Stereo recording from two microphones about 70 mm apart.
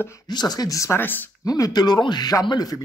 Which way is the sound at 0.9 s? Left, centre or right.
Left.